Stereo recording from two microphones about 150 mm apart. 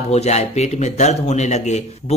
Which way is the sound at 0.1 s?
45° left (ahead or behind).